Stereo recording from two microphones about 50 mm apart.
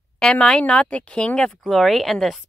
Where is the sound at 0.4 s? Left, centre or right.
Left.